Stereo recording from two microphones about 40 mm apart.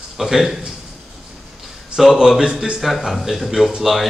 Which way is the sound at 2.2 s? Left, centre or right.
Centre.